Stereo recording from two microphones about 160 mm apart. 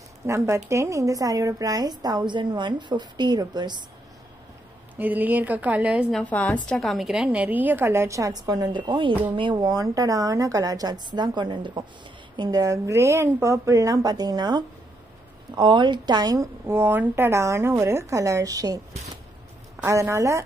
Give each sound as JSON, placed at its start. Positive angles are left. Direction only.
{"t": 0.2, "sound": "a woman's voice", "side_deg": -15}
{"t": 4.9, "sound": "a woman's voice", "side_deg": -10}
{"t": 6.2, "sound": "a woman's voice", "side_deg": 10}
{"t": 19.8, "sound": "a woman's voice", "side_deg": -20}